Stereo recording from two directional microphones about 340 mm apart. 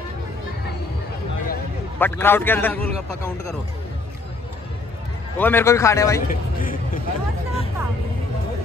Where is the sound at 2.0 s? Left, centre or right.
Centre.